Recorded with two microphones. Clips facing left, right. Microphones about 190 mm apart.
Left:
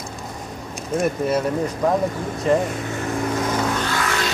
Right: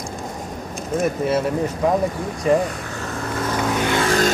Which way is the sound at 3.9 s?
30° right (ahead or behind).